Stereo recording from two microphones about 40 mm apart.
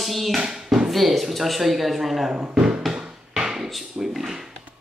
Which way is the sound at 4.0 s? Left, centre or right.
Centre.